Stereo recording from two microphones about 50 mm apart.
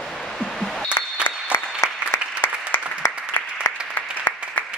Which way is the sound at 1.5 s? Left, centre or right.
Left.